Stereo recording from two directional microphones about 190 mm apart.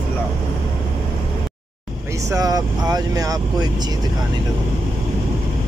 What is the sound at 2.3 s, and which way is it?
Speech, 20° right (ahead or behind).